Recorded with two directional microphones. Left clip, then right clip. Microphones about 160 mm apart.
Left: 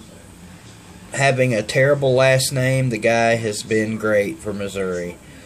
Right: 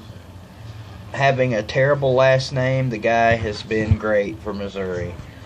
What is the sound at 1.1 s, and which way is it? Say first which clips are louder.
Speech: left 1 dB; 30° left (ahead or behind).